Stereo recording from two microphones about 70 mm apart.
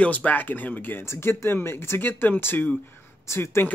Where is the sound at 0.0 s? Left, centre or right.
Centre.